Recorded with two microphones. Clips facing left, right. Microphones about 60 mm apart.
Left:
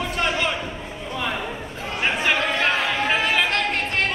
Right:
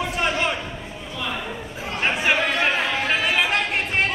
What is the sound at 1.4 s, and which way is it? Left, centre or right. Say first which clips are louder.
Chatter: left 1 dB; centre.